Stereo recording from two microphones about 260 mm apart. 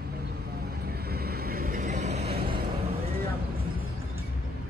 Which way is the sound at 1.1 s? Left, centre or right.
Right.